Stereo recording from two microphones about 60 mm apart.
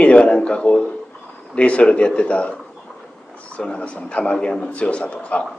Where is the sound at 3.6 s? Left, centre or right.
Centre.